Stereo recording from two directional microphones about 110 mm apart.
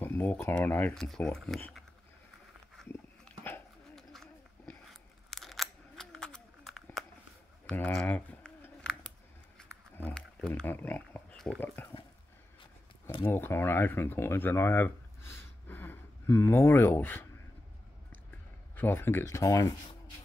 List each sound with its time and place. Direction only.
0.0 s speech: 15° left (ahead or behind)
0.9 s speech: 5° left (ahead or behind)
3.3 s dog: 15° left (ahead or behind)
3.9 s a sound: 5° left (ahead or behind)
7.6 s speech: 15° left (ahead or behind)
8.0 s pigeon: 10° left (ahead or behind)
9.6 s a sound: 10° left (ahead or behind)
11.6 s speech: 15° left (ahead or behind)
13.3 s speech: 20° left (ahead or behind)
18.8 s speech: 20° left (ahead or behind)